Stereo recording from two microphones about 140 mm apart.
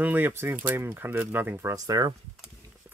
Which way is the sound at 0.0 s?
15° right (ahead or behind).